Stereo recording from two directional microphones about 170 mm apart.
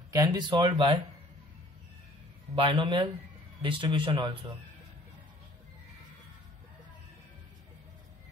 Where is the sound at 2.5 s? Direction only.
30° right (ahead or behind).